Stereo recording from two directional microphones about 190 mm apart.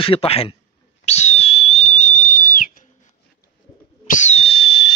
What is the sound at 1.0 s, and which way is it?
Whistle, 35° left (ahead or behind).